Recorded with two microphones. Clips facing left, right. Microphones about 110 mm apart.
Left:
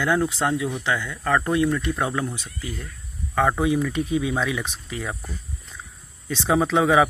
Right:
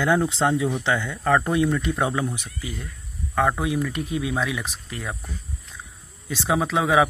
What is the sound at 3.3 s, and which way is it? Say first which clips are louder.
Speech: left 2 dB; centre (ahead or behind).